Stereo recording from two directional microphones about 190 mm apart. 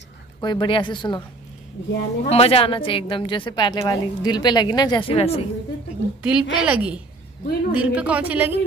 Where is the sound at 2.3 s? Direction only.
30° left (ahead or behind).